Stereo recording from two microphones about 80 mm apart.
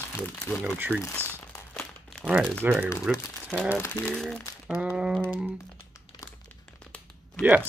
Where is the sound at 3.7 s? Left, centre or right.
Left.